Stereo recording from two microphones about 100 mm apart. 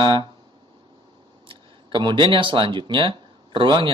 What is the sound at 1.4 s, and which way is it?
Speech, 60° right (ahead or behind).